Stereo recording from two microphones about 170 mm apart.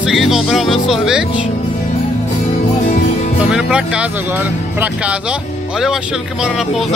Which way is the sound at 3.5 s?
5° right (ahead or behind).